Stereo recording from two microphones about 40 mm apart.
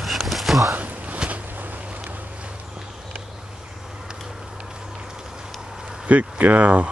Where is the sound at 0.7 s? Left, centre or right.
Right.